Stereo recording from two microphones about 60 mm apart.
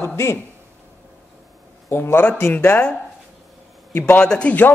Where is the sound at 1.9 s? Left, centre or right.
Left.